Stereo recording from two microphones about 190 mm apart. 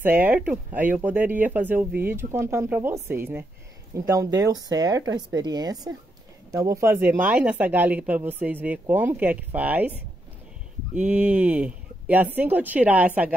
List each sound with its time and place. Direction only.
0.0 s speech: 10° right (ahead or behind)